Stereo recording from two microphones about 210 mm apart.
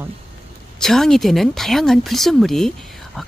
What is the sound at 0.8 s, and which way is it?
Speech, centre (ahead or behind).